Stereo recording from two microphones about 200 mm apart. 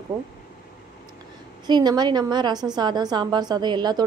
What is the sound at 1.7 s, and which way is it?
A woman's voice, 20° right (ahead or behind).